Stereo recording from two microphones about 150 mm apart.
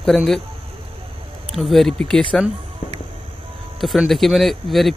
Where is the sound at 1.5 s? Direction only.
Centre (ahead or behind).